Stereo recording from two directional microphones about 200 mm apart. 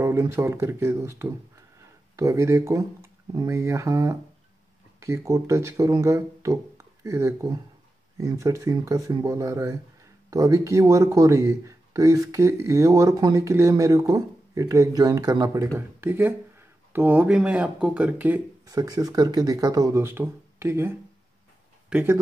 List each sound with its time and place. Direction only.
0.0 s speech: 15° right (ahead or behind)